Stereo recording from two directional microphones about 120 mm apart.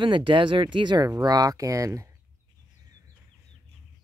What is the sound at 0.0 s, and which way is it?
Speech, 45° right (ahead or behind).